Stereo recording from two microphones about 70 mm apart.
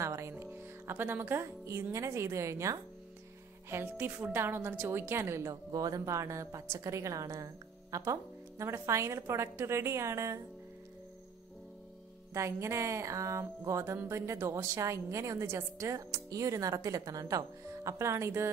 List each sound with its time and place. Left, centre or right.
0.0 s speech: right
3.9 s speech: right
5.7 s a woman's voice: right
12.4 s a woman's voice: right